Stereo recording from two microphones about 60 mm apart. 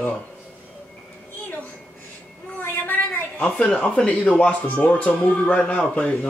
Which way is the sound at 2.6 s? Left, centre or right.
Left.